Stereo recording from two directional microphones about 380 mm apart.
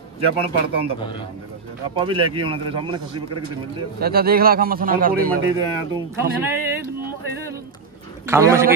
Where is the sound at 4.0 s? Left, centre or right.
Right.